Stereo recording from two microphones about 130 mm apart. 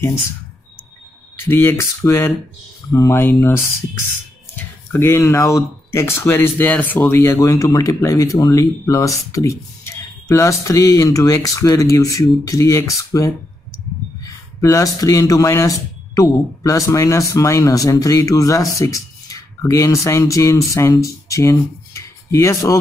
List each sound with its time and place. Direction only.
1.5 s speech: 15° left (ahead or behind)
14.6 s speech: 25° left (ahead or behind)